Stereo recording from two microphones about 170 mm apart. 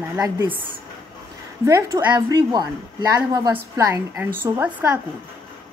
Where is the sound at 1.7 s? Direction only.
15° right (ahead or behind).